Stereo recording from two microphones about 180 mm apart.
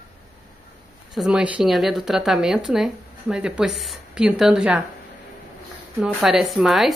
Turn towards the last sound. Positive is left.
turn(degrees=0)  # may be behind; listen again after turning